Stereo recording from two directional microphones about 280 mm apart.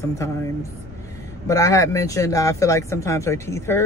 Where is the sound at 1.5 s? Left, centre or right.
Centre.